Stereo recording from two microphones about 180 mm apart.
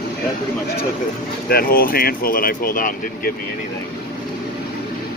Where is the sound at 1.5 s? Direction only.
55° left (ahead or behind).